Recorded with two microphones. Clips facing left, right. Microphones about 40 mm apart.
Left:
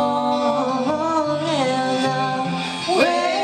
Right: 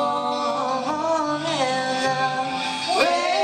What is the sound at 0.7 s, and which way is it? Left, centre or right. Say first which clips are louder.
Music: left 3 dB; centre.